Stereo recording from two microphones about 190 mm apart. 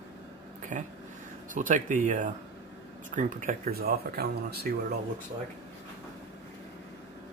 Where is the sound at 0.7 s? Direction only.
40° right (ahead or behind).